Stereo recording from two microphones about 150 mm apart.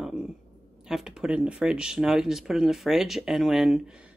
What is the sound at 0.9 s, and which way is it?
Speech, 5° right (ahead or behind).